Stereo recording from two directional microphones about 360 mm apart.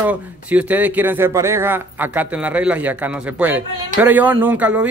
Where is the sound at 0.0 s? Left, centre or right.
Centre.